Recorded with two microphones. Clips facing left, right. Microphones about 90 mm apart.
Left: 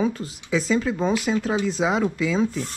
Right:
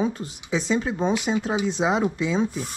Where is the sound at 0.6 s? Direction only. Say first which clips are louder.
Even; 5° right (ahead or behind).